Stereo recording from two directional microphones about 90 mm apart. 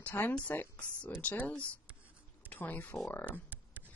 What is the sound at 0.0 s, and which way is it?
Speech, 15° left (ahead or behind).